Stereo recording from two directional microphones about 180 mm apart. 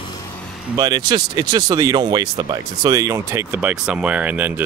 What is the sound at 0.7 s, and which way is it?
Speech, 20° right (ahead or behind).